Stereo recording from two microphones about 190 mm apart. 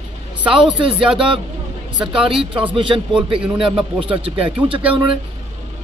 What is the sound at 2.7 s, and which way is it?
Speech, 25° right (ahead or behind).